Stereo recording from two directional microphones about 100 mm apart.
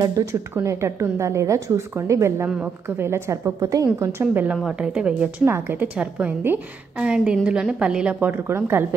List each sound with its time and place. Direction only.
0.0 s a woman's voice: 30° right (ahead or behind)
2.4 s a woman's voice: 15° right (ahead or behind); by 4.1 s 35° right (ahead or behind)
4.2 s a woman's voice: 20° right (ahead or behind)
4.6 s a woman's voice: 10° right (ahead or behind)
5.4 s a woman's voice: 25° right (ahead or behind)